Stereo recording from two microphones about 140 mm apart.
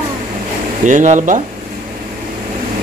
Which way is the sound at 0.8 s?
65° right (ahead or behind).